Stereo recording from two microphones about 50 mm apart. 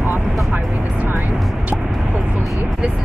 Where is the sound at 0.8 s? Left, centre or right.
Right.